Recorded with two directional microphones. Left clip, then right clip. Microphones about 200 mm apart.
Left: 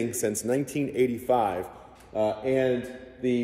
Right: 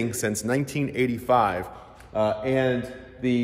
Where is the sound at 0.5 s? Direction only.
10° right (ahead or behind).